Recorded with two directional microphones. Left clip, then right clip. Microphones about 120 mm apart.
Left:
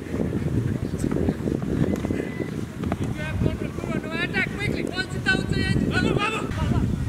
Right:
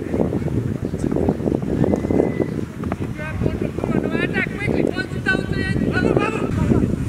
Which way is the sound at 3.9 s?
20° left (ahead or behind).